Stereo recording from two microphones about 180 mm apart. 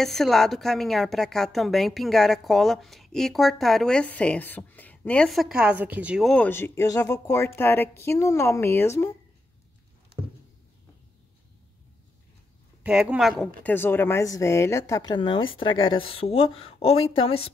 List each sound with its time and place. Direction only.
0.0 s a woman's voice: centre (ahead or behind)
6.3 s speech: 10° left (ahead or behind)
12.8 s a woman's voice: 5° right (ahead or behind)
13.6 s speech: 10° left (ahead or behind); by 17.4 s 30° left (ahead or behind)